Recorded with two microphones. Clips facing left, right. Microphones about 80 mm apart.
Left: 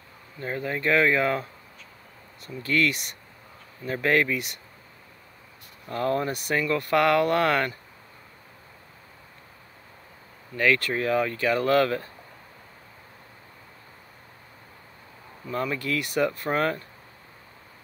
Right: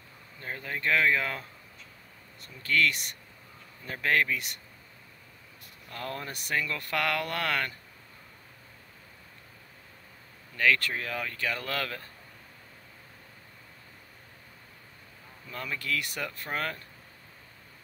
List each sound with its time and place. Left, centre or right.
0.6 s speech: centre
2.4 s speech: centre
5.9 s speech: left
10.6 s speech: centre
15.4 s speech: left
16.3 s speech: left